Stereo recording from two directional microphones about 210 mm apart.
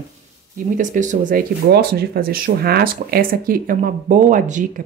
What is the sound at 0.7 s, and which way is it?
A woman's voice, 40° right (ahead or behind).